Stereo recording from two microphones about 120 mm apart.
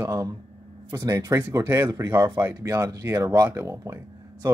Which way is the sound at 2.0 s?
30° right (ahead or behind).